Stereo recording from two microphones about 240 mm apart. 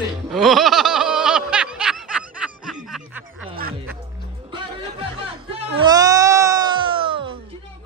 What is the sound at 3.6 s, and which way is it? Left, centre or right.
Music, right.